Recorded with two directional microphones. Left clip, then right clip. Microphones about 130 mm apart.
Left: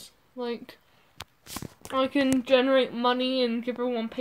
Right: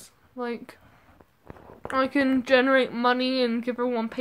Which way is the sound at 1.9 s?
45° right (ahead or behind).